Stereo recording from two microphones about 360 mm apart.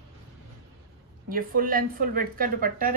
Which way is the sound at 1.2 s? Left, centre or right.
Right.